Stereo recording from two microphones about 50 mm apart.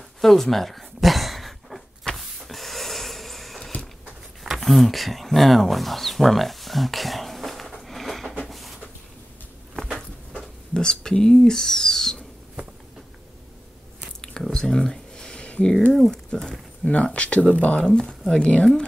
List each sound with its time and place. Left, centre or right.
0.2 s a sound: centre
10.3 s speech: centre
14.5 s a sound: centre
15.9 s speech: centre
16.8 s speech: left
17.8 s speech: centre